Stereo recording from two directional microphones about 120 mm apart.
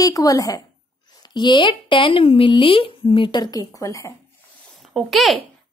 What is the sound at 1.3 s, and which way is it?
Speech, 40° left (ahead or behind).